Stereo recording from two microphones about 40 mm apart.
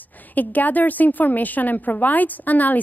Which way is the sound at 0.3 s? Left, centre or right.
Left.